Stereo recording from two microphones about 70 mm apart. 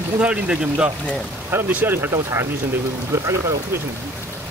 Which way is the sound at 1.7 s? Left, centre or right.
Right.